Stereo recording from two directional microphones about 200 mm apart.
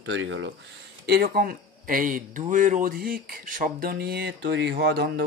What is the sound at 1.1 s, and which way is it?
Speech, 50° right (ahead or behind).